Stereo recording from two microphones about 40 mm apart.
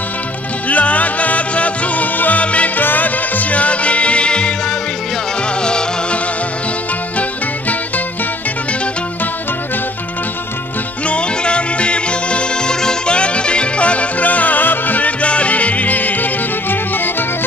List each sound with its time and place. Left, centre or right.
0.7 s music: left
2.4 s music: left
2.8 s music: left
11.1 s music: left